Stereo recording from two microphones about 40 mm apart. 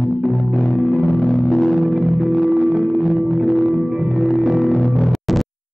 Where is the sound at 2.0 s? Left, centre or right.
Centre.